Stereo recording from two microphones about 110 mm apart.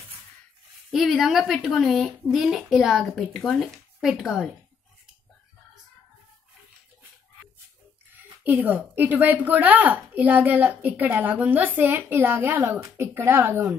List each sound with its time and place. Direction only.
0.9 s speech: centre (ahead or behind)
8.2 s a sound: 15° right (ahead or behind)
8.6 s speech: 15° right (ahead or behind)